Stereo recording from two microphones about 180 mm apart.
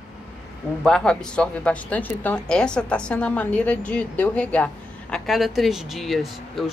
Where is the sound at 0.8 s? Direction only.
5° left (ahead or behind).